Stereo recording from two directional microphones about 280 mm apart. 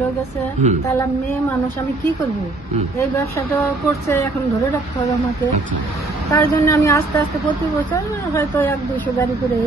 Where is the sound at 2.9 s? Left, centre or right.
Centre.